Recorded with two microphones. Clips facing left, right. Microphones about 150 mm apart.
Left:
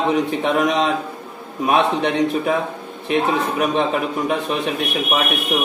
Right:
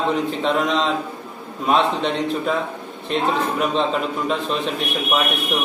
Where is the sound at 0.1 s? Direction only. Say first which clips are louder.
Left 2 dB; 15° left (ahead or behind).